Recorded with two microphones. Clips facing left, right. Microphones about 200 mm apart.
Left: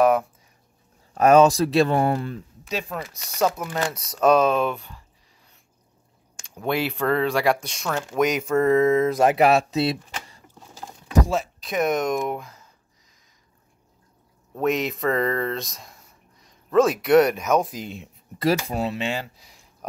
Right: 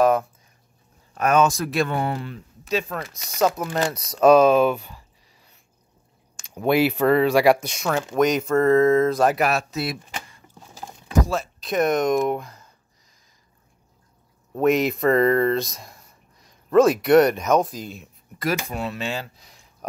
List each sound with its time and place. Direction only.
1.1 s speech: 35° left (ahead or behind)
2.0 s speech: 45° left (ahead or behind)
2.7 s speech: 15° left (ahead or behind)
3.5 s speech: centre (ahead or behind)
6.5 s speech: 10° right (ahead or behind)
8.2 s speech: 10° left (ahead or behind); by 9.9 s 30° left (ahead or behind)
11.2 s speech: 20° left (ahead or behind)
11.6 s speech: 5° left (ahead or behind)
14.5 s speech: centre (ahead or behind); by 18.1 s 20° left (ahead or behind)
18.7 s speech: 35° left (ahead or behind)
18.9 s speech: 15° left (ahead or behind)
19.4 s a sound: 5° left (ahead or behind)